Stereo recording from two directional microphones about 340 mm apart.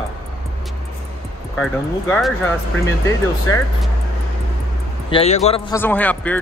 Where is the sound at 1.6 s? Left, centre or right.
Centre.